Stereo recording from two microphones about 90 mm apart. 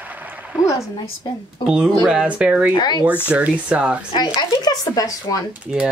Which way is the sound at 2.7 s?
50° left (ahead or behind).